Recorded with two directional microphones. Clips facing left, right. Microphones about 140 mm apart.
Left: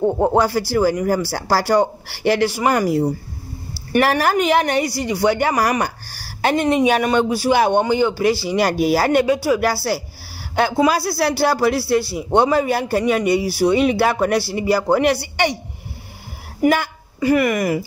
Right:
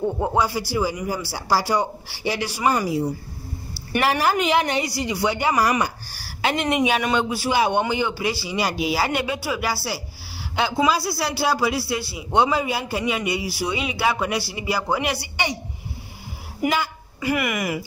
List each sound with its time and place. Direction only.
0.0 s a man's voice: 50° left (ahead or behind)
0.4 s a man's voice: 70° left (ahead or behind); by 7.5 s 40° left (ahead or behind)
7.5 s a man's voice: 50° left (ahead or behind)
12.4 s a man's voice: 50° left (ahead or behind)
16.6 s speech: 55° left (ahead or behind)
17.2 s a man's voice: 35° left (ahead or behind)